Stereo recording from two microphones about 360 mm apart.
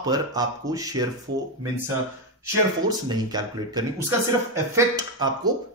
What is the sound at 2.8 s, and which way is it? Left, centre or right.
Speech, centre.